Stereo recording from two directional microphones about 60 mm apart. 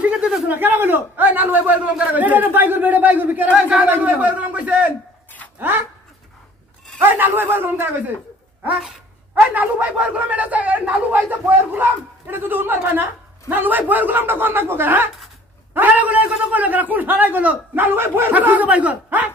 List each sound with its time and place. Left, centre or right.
0.0 s a sound: centre
0.5 s speech: right
5.6 s a man's voice: right
7.0 s a man's voice: right
9.3 s speech: right
18.3 s speech: right